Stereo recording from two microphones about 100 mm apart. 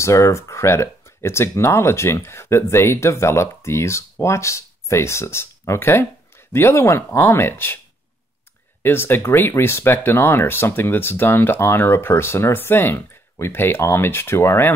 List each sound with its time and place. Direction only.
0.0 s speech: 30° left (ahead or behind)
8.8 s speech: 20° left (ahead or behind)